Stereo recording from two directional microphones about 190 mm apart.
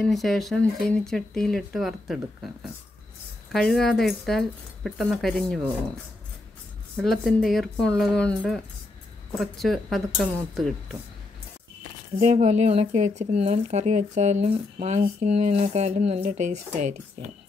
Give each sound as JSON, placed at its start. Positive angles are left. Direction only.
{"t": 0.0, "sound": "speech", "side_deg": 0}
{"t": 3.5, "sound": "speech", "side_deg": 0}
{"t": 7.0, "sound": "speech", "side_deg": 0}
{"t": 12.2, "sound": "speech", "side_deg": -40}